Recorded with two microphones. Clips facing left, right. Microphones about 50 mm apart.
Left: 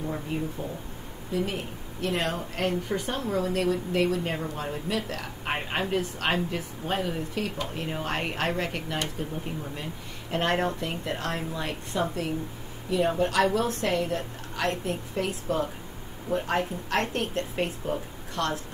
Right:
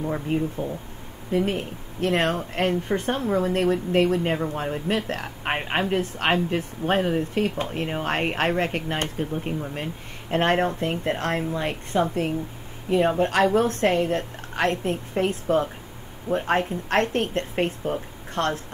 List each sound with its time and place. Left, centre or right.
0.3 s a woman's voice: right